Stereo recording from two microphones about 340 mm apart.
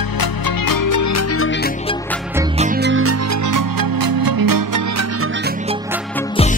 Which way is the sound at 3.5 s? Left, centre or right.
Right.